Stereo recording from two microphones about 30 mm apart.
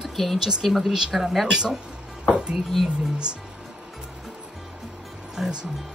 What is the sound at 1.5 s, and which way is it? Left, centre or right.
Speech, right.